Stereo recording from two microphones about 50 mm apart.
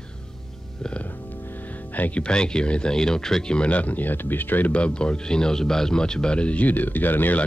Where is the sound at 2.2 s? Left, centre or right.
Centre; by 4.7 s left.